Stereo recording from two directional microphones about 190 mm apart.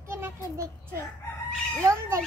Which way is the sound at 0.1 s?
15° right (ahead or behind).